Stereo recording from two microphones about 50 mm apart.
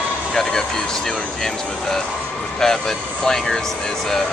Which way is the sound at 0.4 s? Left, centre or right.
Centre.